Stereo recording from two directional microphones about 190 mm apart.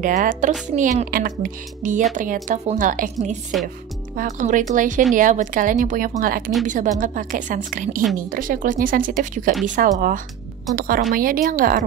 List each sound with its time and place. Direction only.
0.0 s a woman's voice: 45° right (ahead or behind)